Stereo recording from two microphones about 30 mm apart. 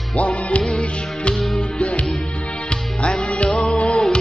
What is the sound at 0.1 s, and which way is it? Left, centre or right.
Music, left.